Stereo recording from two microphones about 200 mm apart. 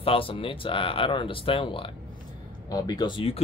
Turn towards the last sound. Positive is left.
turn(degrees=25)  # may be behind; listen again after turning